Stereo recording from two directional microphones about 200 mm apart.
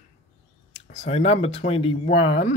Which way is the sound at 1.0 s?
30° left (ahead or behind).